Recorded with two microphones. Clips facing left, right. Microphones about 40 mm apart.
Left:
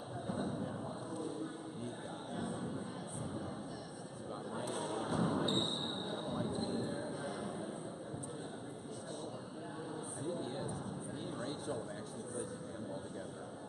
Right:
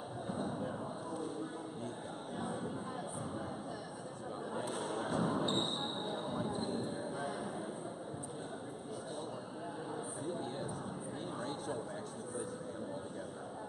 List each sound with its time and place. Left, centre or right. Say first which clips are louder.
2.3 s music: right 1 dB; centre
4.6 s basketball bounce: even; centre
10.2 s a sound: left 2 dB; centre